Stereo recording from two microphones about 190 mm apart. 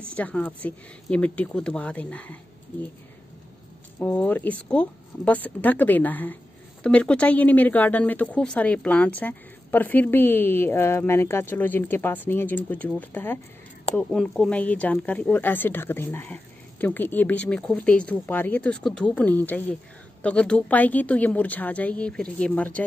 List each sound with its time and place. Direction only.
0.1 s a woman's voice: 5° left (ahead or behind)
4.0 s a woman's voice: 10° left (ahead or behind)